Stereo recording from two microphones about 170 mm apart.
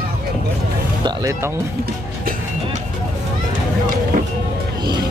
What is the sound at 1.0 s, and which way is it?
Speech, 20° right (ahead or behind).